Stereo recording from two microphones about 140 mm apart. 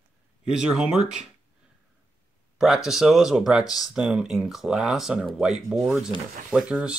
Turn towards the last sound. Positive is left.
turn(degrees=-5)  # may be behind; listen again after turning